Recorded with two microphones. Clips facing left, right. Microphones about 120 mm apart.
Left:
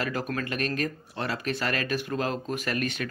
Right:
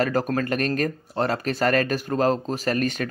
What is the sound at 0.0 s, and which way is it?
Speech, 40° right (ahead or behind).